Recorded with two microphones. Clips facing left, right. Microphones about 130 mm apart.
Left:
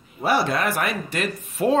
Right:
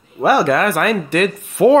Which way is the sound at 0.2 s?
65° right (ahead or behind).